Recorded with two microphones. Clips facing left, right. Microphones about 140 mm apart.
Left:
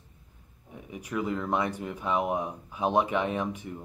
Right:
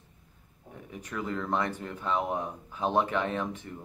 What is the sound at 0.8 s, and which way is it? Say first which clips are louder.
Speech: left 4 dB; 10° left (ahead or behind).